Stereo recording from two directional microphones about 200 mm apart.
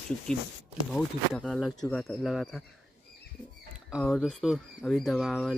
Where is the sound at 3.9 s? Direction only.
Centre (ahead or behind).